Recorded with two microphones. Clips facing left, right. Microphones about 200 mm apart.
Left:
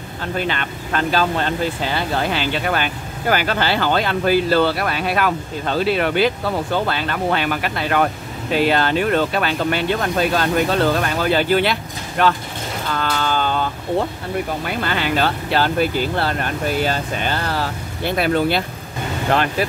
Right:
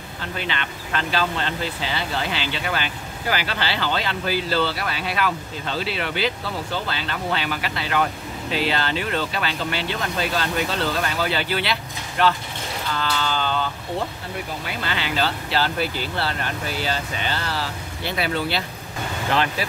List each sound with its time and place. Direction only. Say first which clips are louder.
0.4 s speech: left 5 dB; 45° left (ahead or behind)
12.9 s a sound: left 4 dB; 50° left (ahead or behind)
14.7 s speech: left 5 dB; 50° left (ahead or behind)